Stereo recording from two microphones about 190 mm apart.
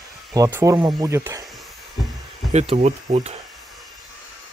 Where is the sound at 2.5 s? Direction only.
35° right (ahead or behind).